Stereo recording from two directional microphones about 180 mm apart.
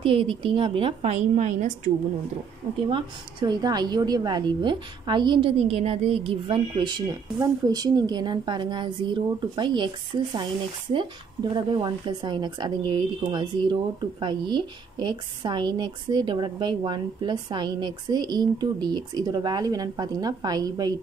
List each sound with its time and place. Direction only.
0.0 s a woman's voice: 30° right (ahead or behind)
2.9 s a woman's voice: 25° right (ahead or behind)